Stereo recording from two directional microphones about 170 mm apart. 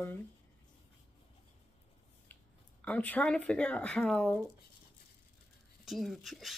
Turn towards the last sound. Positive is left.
turn(degrees=0)  # may be behind; listen again after turning